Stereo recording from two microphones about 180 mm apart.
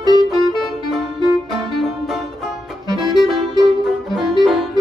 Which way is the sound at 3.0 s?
Centre (ahead or behind).